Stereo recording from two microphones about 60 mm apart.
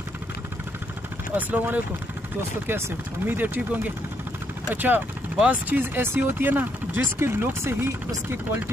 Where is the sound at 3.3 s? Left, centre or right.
Right.